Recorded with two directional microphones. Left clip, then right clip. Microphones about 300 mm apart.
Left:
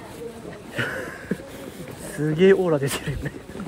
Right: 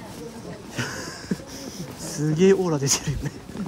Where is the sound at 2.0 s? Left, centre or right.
Centre.